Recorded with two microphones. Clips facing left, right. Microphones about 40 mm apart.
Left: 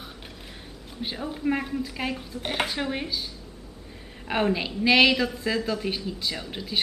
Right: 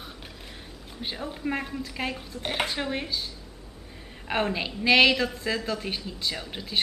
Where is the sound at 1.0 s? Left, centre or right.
Centre.